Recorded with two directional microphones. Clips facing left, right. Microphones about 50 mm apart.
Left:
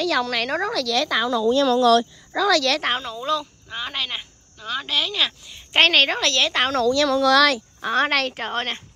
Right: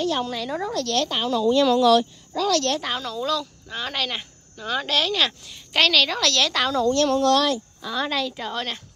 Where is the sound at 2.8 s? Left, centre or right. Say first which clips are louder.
Left 4 dB; left.